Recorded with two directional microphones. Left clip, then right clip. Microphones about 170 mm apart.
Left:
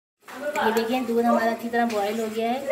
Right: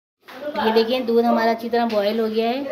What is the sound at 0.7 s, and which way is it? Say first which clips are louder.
A woman's voice: right 6 dB; 60° right (ahead or behind).